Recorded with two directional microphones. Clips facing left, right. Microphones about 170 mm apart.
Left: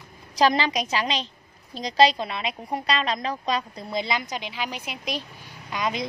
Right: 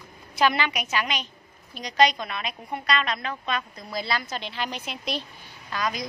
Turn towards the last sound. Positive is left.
turn(degrees=20)  # may be behind; listen again after turning